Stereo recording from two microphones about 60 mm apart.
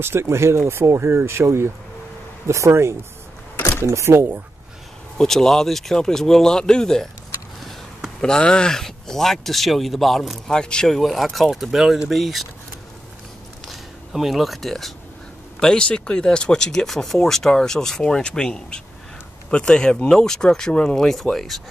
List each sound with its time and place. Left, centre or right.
0.0 s speech: right
5.1 s speech: centre
8.2 s speech: centre
11.0 s speech: centre
13.7 s speech: centre
15.6 s speech: centre